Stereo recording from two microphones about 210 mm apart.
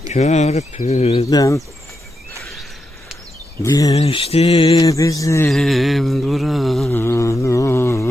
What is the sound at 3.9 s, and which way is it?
Mantra, 30° left (ahead or behind).